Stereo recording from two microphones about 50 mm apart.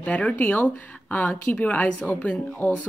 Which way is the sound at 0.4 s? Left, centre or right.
Left.